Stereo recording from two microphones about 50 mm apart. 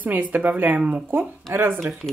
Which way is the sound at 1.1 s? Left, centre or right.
Right.